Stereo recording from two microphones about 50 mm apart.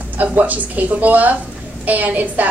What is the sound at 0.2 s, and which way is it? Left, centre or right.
A woman's voice, right.